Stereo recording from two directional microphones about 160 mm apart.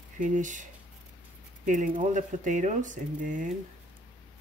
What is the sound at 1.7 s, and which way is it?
Speech, 50° right (ahead or behind).